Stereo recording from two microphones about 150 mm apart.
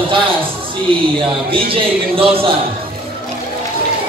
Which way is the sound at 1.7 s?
40° right (ahead or behind).